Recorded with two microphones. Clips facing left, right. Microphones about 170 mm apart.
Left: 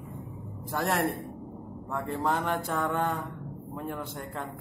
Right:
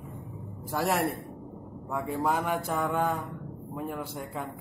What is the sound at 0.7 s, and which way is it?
Speech, 5° right (ahead or behind).